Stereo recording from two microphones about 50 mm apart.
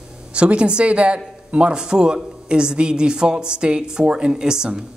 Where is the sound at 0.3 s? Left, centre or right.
Right.